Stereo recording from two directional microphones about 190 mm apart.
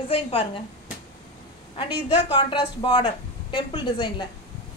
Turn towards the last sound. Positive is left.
turn(degrees=25)  # may be behind; listen again after turning